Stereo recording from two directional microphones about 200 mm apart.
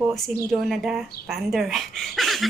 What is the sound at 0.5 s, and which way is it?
A woman's voice, centre (ahead or behind).